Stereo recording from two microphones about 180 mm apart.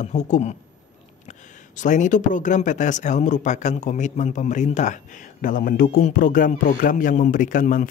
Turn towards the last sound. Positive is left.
turn(degrees=45)  # may be behind; listen again after turning